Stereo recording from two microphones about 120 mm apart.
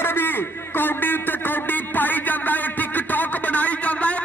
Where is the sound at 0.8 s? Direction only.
15° left (ahead or behind).